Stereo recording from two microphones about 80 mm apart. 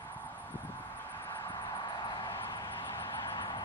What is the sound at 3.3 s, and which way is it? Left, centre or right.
Vehicle, left.